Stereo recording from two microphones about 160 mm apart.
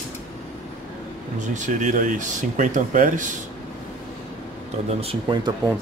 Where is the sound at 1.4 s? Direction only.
50° right (ahead or behind).